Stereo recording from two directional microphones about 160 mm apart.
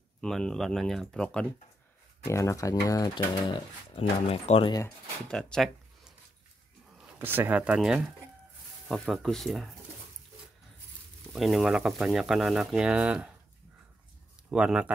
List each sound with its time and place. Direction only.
0.2 s speech: 5° left (ahead or behind)
2.2 s speech: 20° left (ahead or behind); by 4.7 s 40° left (ahead or behind)
4.8 s speech: 5° left (ahead or behind)
7.2 s speech: 10° right (ahead or behind)
11.3 s speech: centre (ahead or behind)
14.5 s speech: 5° right (ahead or behind)